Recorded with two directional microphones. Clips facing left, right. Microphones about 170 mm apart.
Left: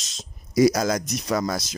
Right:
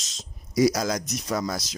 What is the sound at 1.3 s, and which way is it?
Speech, 70° left (ahead or behind).